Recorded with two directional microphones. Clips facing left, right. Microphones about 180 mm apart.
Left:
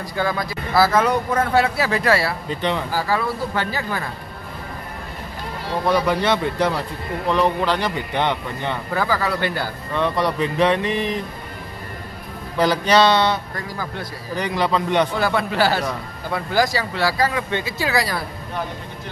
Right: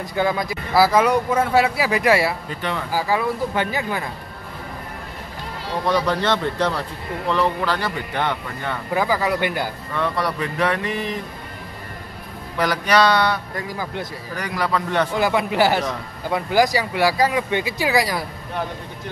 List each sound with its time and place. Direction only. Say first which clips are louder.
0.0 s speech: right 2 dB; 20° right (ahead or behind)
2.5 s speech: left 4 dB; 20° left (ahead or behind)
2.9 s speech: right 1 dB; 15° right (ahead or behind)
5.9 s speech: left 1 dB; 10° left (ahead or behind)
8.9 s speech: right 2 dB; 15° right (ahead or behind)
9.9 s speech: left 3 dB; 20° left (ahead or behind)
12.5 s speech: left 2 dB; 25° left (ahead or behind)
13.6 s a man's voice: right 2 dB; 20° right (ahead or behind)
14.3 s speech: left 3 dB; 25° left (ahead or behind)
15.1 s speech: right 1 dB; 15° right (ahead or behind)